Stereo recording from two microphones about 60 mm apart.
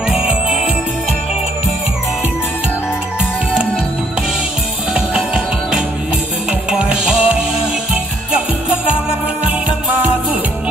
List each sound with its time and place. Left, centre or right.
0.1 s music: centre
4.9 s music: centre